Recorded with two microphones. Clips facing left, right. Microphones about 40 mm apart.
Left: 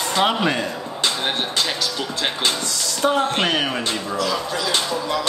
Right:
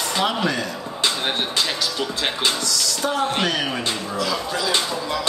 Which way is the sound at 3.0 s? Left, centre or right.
Left.